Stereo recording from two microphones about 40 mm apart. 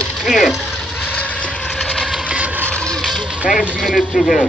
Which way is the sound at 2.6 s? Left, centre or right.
Left.